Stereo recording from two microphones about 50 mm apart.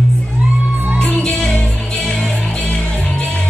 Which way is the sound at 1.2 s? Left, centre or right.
Centre.